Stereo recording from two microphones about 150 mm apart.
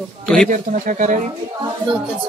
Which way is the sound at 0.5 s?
60° right (ahead or behind).